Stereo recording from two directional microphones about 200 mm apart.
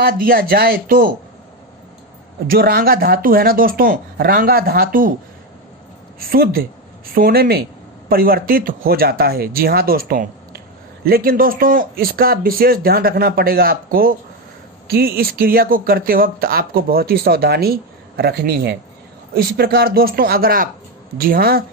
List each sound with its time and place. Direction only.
0.0 s speech: 45° right (ahead or behind)
2.4 s speech: 50° right (ahead or behind)
6.1 s speech: 50° right (ahead or behind)